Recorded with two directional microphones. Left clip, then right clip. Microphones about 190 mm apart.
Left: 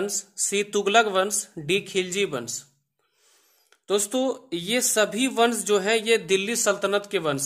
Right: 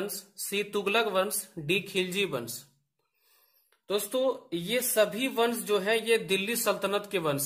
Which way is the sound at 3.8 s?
35° left (ahead or behind).